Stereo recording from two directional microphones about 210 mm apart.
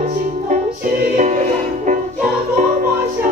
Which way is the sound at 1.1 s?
35° right (ahead or behind).